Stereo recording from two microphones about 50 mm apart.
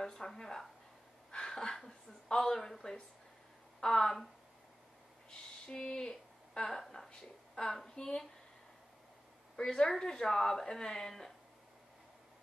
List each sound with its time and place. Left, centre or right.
0.0 s a woman's voice: centre
5.3 s a woman's voice: centre
9.6 s speech: centre